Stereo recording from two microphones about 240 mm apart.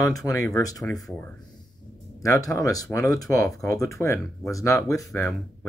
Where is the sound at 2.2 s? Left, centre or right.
Centre.